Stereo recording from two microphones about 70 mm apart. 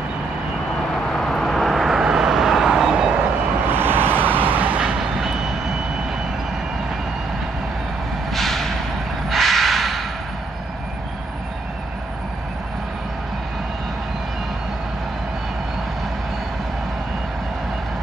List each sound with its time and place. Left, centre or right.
0.9 s vehicle: centre
3.6 s vehicle: right
8.3 s a sound: centre
9.3 s crow: centre